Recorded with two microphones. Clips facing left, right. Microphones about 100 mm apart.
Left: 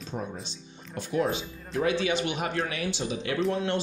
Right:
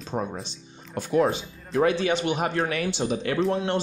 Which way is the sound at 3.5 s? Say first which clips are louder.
Right 3 dB; 30° right (ahead or behind).